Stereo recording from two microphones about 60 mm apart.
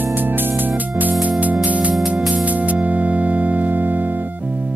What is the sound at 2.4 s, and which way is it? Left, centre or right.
Music, right.